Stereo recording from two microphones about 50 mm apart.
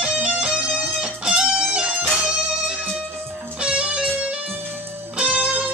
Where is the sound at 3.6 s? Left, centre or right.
Right.